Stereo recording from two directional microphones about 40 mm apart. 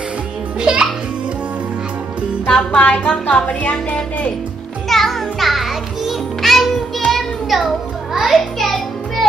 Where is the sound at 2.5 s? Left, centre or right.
Left.